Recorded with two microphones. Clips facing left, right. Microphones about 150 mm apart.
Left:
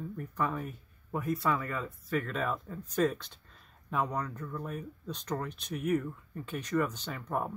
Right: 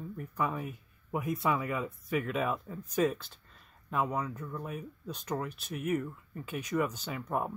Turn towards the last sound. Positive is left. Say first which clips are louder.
# right 1 dB
turn(degrees=-5)  # may be behind; listen again after turning